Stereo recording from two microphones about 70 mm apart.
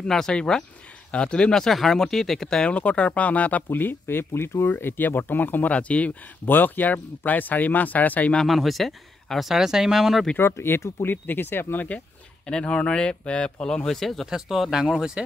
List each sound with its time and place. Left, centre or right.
0.0 s speech: centre
8.4 s speech: centre
10.3 s speech: left
12.4 s speech: centre